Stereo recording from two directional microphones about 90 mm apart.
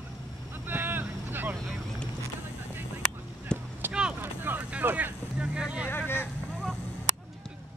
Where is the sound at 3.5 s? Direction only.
10° left (ahead or behind).